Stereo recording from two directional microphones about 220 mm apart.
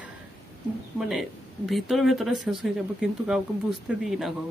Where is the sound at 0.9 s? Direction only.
Centre (ahead or behind).